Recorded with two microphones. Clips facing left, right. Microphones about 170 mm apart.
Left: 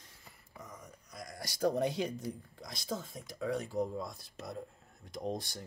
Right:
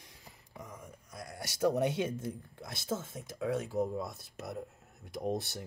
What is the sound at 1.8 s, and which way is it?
Speech, 65° right (ahead or behind).